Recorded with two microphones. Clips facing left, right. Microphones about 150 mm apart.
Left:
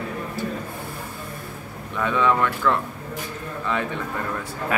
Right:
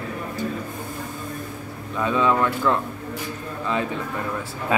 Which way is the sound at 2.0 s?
20° right (ahead or behind).